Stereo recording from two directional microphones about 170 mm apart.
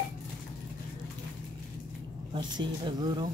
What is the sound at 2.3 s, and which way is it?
Speech, 25° right (ahead or behind).